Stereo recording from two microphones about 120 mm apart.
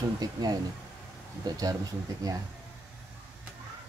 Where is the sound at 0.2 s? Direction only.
30° right (ahead or behind).